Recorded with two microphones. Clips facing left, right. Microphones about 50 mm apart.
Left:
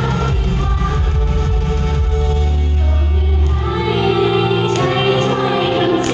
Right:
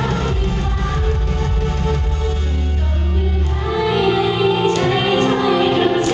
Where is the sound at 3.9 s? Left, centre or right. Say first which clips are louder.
Left 3 dB; left.